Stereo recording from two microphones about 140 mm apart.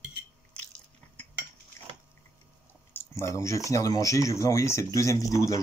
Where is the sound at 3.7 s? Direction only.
25° left (ahead or behind).